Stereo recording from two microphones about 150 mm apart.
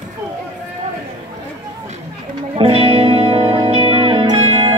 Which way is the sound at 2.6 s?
40° right (ahead or behind).